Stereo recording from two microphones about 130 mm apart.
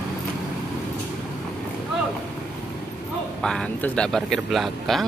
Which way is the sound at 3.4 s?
5° left (ahead or behind).